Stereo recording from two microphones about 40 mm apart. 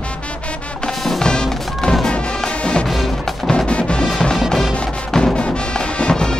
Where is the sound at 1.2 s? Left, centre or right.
Centre.